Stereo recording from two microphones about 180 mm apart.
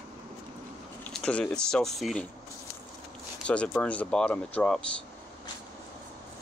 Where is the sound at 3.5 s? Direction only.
5° left (ahead or behind).